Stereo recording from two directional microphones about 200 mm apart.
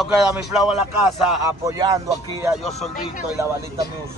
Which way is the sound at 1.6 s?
15° right (ahead or behind).